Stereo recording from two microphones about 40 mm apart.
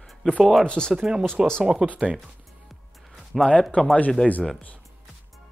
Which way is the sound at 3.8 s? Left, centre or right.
Left.